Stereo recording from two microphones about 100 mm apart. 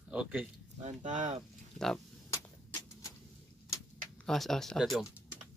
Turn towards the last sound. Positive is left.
turn(degrees=0)  # may be behind; listen again after turning